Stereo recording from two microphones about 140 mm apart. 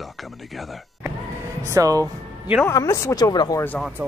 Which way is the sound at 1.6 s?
25° right (ahead or behind).